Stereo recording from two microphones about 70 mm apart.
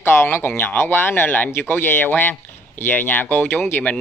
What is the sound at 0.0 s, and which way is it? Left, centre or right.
Speech, left.